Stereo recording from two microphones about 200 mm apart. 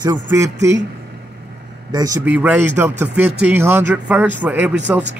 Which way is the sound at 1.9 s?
15° right (ahead or behind).